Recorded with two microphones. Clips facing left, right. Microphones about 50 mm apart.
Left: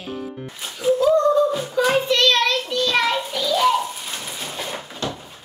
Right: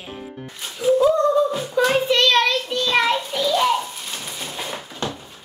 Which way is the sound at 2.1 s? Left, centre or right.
Centre.